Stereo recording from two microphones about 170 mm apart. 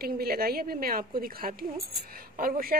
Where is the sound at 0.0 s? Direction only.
65° right (ahead or behind).